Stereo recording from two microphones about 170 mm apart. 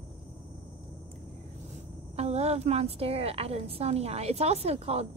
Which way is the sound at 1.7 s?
40° right (ahead or behind).